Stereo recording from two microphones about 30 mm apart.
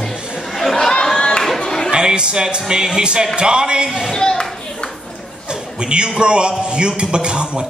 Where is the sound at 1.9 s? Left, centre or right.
Right.